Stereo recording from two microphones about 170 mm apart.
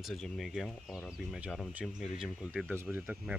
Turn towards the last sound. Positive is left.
turn(degrees=-5)  # may be behind; listen again after turning